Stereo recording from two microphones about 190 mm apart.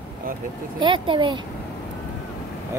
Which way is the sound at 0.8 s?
25° right (ahead or behind).